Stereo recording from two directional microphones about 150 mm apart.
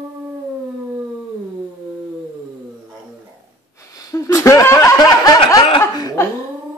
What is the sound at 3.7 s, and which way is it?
Snicker, 20° left (ahead or behind).